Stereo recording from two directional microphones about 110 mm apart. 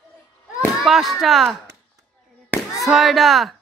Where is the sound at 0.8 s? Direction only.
Centre (ahead or behind).